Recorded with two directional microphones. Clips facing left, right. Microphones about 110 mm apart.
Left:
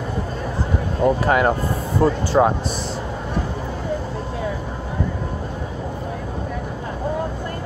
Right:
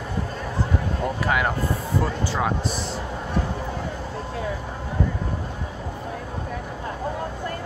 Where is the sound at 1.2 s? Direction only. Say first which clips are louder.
Left 5 dB; 35° left (ahead or behind).